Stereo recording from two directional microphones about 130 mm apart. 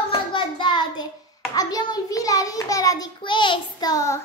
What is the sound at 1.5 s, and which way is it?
A woman's voice, 30° left (ahead or behind).